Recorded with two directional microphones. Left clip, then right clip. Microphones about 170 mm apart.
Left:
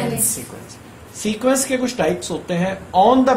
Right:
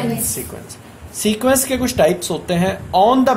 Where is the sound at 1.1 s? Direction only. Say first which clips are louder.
Right 3 dB; 70° right (ahead or behind).